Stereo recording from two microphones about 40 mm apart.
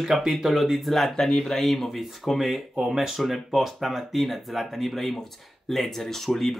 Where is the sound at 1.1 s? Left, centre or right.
Centre.